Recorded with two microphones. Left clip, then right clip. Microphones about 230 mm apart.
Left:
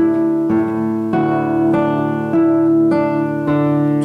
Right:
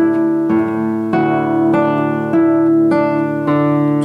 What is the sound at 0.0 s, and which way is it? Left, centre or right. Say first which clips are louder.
Music: right 1 dB; centre.